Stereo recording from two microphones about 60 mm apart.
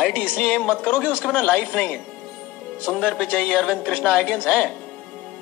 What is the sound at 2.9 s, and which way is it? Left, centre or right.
Speech, left.